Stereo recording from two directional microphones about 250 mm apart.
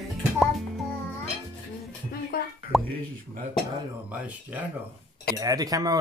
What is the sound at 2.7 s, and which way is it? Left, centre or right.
Speech, centre.